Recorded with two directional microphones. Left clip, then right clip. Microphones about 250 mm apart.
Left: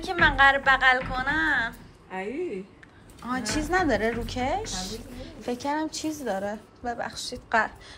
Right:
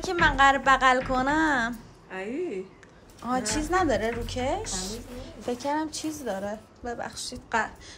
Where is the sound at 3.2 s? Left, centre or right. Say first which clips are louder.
Right 1 dB; centre.